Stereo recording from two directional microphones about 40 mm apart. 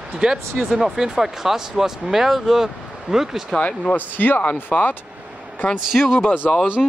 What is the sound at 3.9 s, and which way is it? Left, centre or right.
Speech, left.